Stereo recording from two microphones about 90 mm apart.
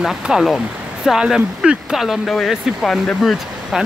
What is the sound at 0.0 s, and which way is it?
Speech, 5° right (ahead or behind).